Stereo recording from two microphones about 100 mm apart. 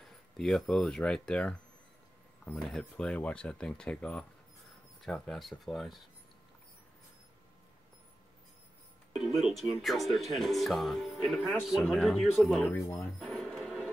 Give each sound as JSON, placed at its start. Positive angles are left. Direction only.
{"t": 0.0, "sound": "speech", "side_deg": 5}
{"t": 2.8, "sound": "speech", "side_deg": 15}
{"t": 9.1, "sound": "speech", "side_deg": 0}
{"t": 12.7, "sound": "speech", "side_deg": 25}
{"t": 13.2, "sound": "a sound", "side_deg": 0}